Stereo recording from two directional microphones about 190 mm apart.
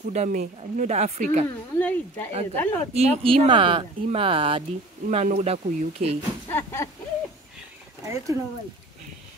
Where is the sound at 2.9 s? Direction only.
30° right (ahead or behind).